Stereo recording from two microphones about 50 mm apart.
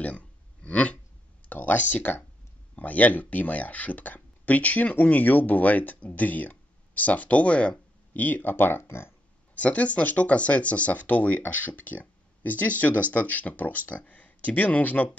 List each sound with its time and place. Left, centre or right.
0.0 s a sound: left
1.5 s speech: left
8.1 s speech: left
8.8 s speech: left
9.6 s speech: left